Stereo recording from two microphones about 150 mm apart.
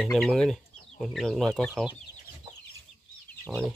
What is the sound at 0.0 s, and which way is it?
Speech, 5° left (ahead or behind).